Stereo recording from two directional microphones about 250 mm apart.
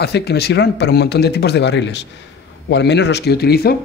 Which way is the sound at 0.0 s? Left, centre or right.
Left.